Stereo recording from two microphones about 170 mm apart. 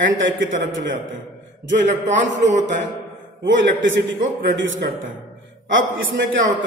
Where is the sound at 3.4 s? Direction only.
90° right.